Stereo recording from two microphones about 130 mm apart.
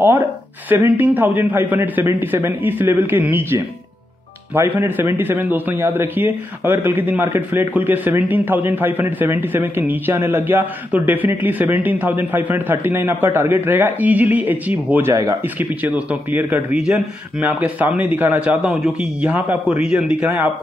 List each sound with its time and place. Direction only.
0.0 s a man's voice: 15° right (ahead or behind)